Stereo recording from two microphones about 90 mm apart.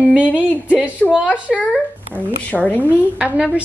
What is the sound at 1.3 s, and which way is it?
A woman's voice, 15° left (ahead or behind).